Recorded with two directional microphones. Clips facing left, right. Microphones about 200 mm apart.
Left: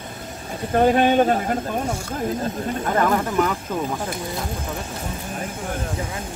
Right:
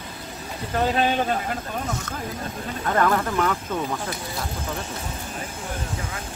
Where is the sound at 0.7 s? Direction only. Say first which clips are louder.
Left 6 dB; 50° left (ahead or behind).